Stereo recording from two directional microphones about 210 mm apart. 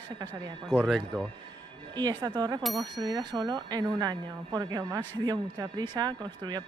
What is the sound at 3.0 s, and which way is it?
Speech, 20° right (ahead or behind).